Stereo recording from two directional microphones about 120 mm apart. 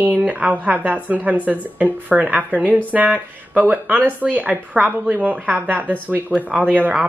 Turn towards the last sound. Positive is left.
turn(degrees=-10)  # may be behind; listen again after turning